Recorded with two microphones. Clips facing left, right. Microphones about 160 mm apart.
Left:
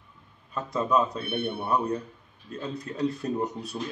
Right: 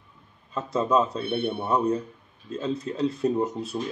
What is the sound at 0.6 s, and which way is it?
A man's voice, 25° right (ahead or behind).